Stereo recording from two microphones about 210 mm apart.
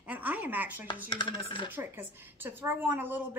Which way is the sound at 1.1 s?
20° left (ahead or behind).